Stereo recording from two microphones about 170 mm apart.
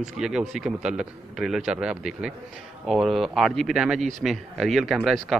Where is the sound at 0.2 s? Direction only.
5° right (ahead or behind).